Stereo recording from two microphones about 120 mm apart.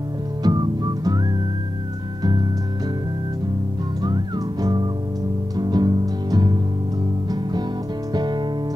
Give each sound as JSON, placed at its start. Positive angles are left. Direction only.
{"t": 0.4, "sound": "whistling", "side_deg": -35}
{"t": 4.0, "sound": "whistling", "side_deg": -35}
{"t": 5.6, "sound": "music", "side_deg": -35}
{"t": 8.1, "sound": "music", "side_deg": -35}